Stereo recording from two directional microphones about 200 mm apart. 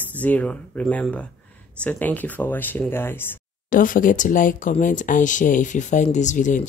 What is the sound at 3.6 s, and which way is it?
Speech, 40° left (ahead or behind).